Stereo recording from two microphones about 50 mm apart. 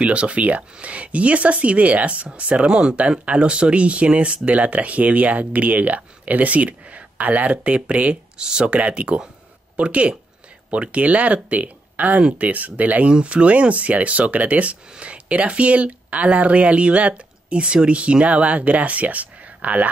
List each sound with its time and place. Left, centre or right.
0.0 s speech: right